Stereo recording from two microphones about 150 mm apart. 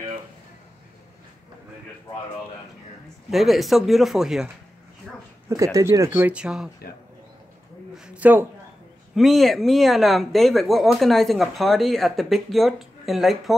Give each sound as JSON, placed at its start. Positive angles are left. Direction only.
{"t": 3.3, "sound": "speech", "side_deg": 0}
{"t": 5.5, "sound": "speech", "side_deg": -25}
{"t": 7.9, "sound": "a sound", "side_deg": -5}
{"t": 9.1, "sound": "speech", "side_deg": 0}